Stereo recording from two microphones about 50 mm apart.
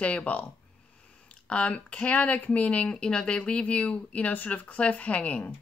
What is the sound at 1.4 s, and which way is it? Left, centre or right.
Speech, left.